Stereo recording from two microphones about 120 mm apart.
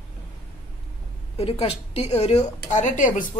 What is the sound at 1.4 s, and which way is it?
A woman's voice, 55° left (ahead or behind).